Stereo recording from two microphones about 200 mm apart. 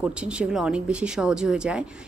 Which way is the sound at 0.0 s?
5° right (ahead or behind).